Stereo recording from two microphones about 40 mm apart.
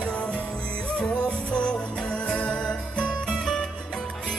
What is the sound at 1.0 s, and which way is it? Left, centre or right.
Music, left.